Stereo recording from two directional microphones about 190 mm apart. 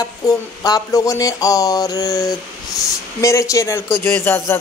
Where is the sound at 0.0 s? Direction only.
20° left (ahead or behind).